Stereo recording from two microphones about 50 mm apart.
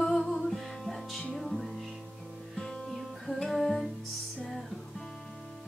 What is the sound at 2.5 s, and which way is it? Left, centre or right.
Music, centre.